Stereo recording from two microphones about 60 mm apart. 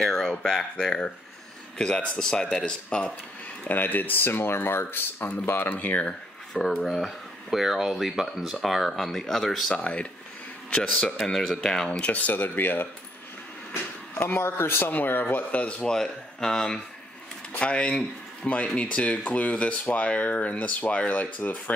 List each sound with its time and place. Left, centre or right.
0.0 s speech: centre
3.6 s speech: left
6.8 s speech: centre
9.8 s speech: left
11.2 s speech: centre
11.9 s speech: left
14.1 s speech: left
15.8 s speech: centre; by 21.7 s left